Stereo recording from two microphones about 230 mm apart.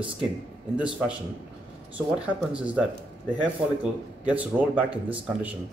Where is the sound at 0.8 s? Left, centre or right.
Centre.